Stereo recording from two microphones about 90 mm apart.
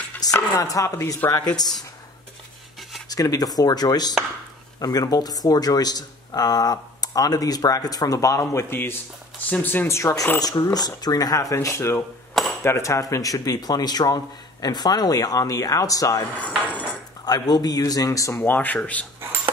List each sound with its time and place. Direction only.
0.2 s speech: 40° left (ahead or behind)
3.1 s speech: 45° left (ahead or behind); by 9.8 s 20° left (ahead or behind)
9.8 s speech: 35° left (ahead or behind)
10.6 s speech: 50° left (ahead or behind)
11.5 s speech: 30° left (ahead or behind)
16.3 s cutlery: 15° left (ahead or behind)
17.2 s speech: 50° left (ahead or behind)
18.3 s speech: 20° left (ahead or behind)